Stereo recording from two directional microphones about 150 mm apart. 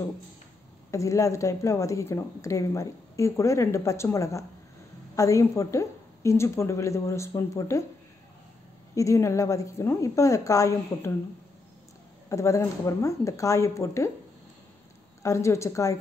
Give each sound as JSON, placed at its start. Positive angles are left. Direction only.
{"t": 0.9, "sound": "speech", "side_deg": 20}
{"t": 8.9, "sound": "speech", "side_deg": 20}
{"t": 12.3, "sound": "speech", "side_deg": 20}
{"t": 15.2, "sound": "speech", "side_deg": 20}